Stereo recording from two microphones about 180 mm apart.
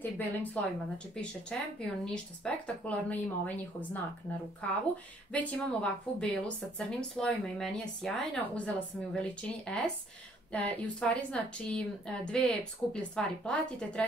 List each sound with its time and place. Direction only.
0.4 s a woman's voice: 5° left (ahead or behind)